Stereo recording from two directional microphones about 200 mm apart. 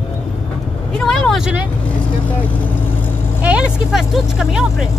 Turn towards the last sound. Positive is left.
turn(degrees=-5)  # may be behind; listen again after turning